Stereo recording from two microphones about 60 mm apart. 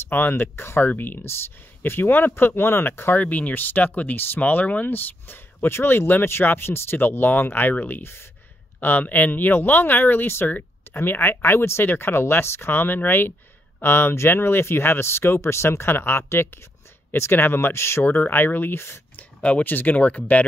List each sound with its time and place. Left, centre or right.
0.1 s speech: left
3.2 s speech: left
8.7 s speech: left
18.0 s speech: left
19.4 s speech: left